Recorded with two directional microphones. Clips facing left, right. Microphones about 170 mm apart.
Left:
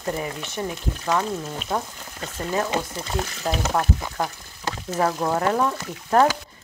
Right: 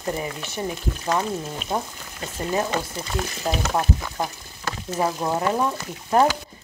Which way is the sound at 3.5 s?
10° right (ahead or behind).